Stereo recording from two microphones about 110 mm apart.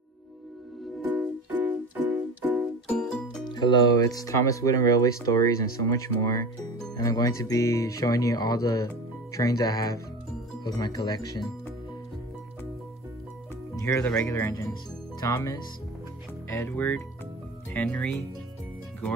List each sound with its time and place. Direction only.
1.1 s music: 15° right (ahead or behind)
3.0 s music: 5° left (ahead or behind)
3.4 s speech: 45° left (ahead or behind)
13.7 s music: 30° left (ahead or behind)
14.0 s speech: 5° left (ahead or behind)
15.1 s speech: 35° left (ahead or behind)
16.4 s speech: 25° left (ahead or behind)
17.8 s speech: 5° left (ahead or behind)